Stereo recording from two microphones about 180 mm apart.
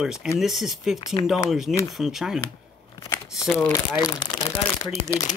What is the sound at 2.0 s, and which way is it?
Speech, centre (ahead or behind).